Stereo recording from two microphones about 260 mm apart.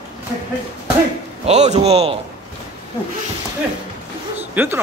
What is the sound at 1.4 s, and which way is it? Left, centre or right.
Speech, right.